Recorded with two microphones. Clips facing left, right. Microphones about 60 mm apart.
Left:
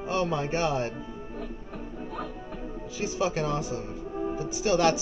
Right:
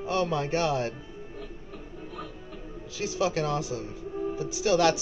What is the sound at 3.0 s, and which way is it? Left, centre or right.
Speech, centre.